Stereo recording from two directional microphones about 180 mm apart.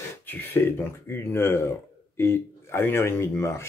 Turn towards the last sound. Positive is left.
turn(degrees=15)  # may be behind; listen again after turning